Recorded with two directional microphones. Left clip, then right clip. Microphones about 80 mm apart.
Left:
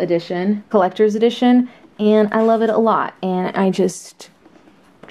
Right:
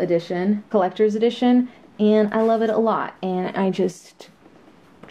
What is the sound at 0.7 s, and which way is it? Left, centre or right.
Speech, left.